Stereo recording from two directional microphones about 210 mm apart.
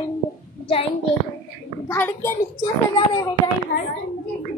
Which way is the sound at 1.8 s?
10° left (ahead or behind).